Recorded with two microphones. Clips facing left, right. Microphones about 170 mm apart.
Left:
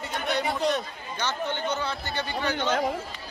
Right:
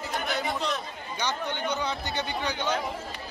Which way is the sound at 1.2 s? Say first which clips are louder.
Left 1 dB; 15° right (ahead or behind).